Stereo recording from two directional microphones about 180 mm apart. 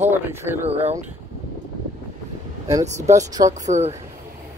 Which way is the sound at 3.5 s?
40° right (ahead or behind).